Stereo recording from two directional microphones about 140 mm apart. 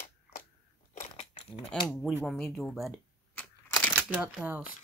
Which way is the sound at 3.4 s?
15° left (ahead or behind).